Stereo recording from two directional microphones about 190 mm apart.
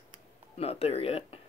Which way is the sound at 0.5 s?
30° left (ahead or behind).